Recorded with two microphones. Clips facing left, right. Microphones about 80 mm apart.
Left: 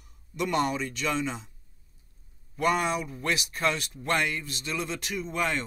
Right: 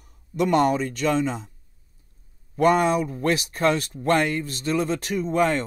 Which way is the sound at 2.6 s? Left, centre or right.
Right.